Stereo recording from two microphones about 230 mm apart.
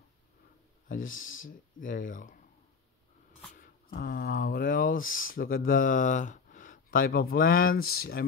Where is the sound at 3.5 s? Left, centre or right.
Left.